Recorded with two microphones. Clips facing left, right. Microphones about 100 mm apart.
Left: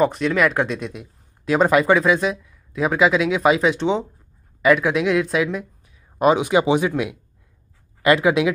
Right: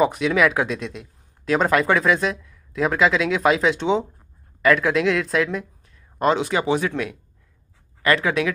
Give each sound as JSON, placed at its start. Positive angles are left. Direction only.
{"t": 0.0, "sound": "speech", "side_deg": -5}